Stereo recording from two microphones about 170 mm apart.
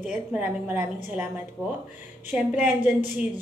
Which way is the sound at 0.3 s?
10° right (ahead or behind).